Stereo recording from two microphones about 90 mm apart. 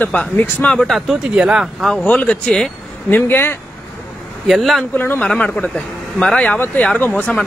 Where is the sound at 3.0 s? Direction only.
20° left (ahead or behind).